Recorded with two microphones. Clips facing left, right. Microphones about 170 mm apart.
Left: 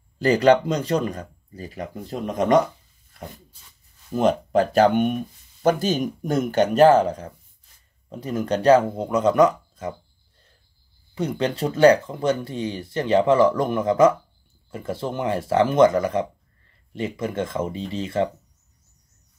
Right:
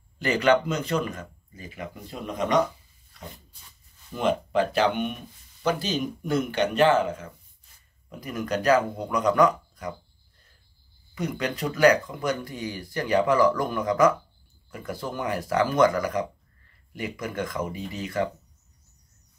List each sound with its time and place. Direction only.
0.2 s speech: 35° left (ahead or behind)
4.1 s speech: 40° left (ahead or behind); by 9.9 s 25° left (ahead or behind)
11.1 s speech: 30° left (ahead or behind)